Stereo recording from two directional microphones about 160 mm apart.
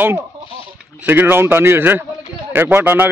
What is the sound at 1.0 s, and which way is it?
A man's voice, 10° right (ahead or behind).